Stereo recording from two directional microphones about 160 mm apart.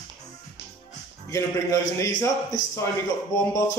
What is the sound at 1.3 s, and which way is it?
A man's voice, 20° left (ahead or behind).